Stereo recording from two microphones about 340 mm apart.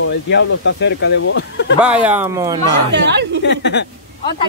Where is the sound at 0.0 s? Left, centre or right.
Left.